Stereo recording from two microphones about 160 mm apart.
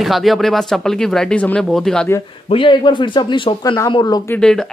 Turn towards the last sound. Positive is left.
turn(degrees=5)  # may be behind; listen again after turning